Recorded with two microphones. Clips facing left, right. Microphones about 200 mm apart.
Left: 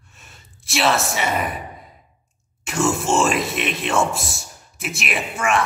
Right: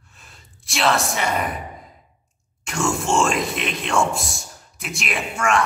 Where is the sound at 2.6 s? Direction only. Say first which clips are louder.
Left 2 dB; 5° left (ahead or behind).